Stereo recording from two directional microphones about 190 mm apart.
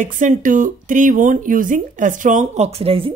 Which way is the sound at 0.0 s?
45° right (ahead or behind).